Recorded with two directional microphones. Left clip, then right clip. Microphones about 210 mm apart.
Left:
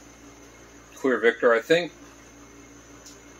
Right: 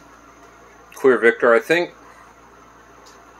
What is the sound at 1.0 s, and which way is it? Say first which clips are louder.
Speech: right 6 dB; 50° right (ahead or behind).